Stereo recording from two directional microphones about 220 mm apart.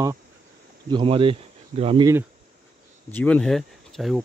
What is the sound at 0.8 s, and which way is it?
Speech, 20° right (ahead or behind).